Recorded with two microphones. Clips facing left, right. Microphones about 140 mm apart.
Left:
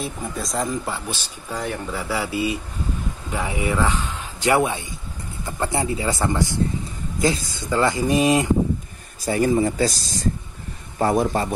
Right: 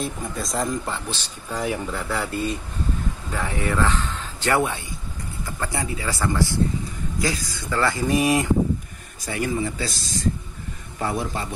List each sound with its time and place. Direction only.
0.0 s speech: centre (ahead or behind)
1.5 s a man's voice: centre (ahead or behind); by 4.8 s 15° left (ahead or behind)
5.4 s speech: 25° left (ahead or behind)
9.2 s speech: 35° left (ahead or behind)
11.0 s a man's voice: 45° left (ahead or behind)